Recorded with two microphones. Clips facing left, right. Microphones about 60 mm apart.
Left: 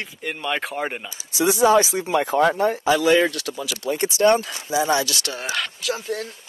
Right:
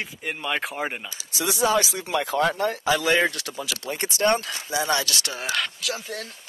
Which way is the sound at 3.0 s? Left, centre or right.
Right.